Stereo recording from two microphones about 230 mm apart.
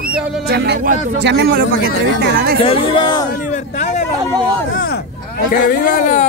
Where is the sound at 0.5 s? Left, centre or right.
Right.